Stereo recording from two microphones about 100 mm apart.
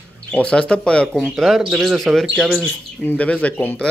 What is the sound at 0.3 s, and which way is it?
Speech, 10° left (ahead or behind).